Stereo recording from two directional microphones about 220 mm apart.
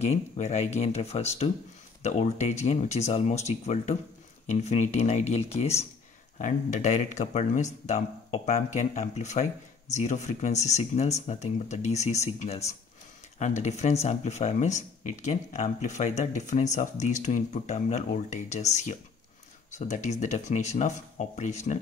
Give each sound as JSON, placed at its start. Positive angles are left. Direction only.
{"t": 0.0, "sound": "speech", "side_deg": 30}